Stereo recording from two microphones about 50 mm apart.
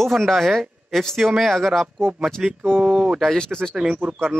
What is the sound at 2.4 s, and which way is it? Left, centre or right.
Speech, centre.